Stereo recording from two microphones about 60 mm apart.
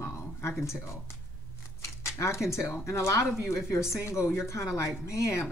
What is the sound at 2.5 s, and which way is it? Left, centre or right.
Speech, left.